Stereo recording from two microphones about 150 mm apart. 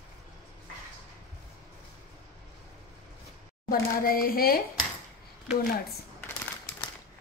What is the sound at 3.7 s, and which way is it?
Speech, 75° left (ahead or behind).